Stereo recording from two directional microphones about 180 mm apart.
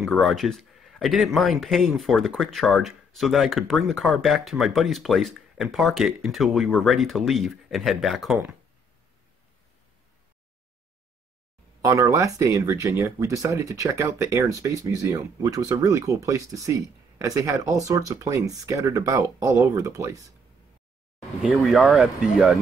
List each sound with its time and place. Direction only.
0.0 s speech: centre (ahead or behind)
11.8 s speech: 20° right (ahead or behind)
21.4 s speech: 5° right (ahead or behind)